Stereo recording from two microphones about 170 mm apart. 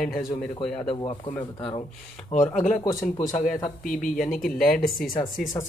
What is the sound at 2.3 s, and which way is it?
Speech, 40° left (ahead or behind).